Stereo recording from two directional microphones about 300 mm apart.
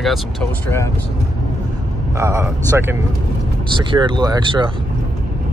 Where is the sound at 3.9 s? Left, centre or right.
Centre.